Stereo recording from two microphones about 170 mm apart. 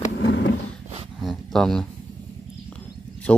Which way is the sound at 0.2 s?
90° left.